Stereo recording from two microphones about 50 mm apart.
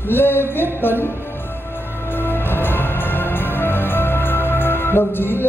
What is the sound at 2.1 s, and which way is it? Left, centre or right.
Music, left.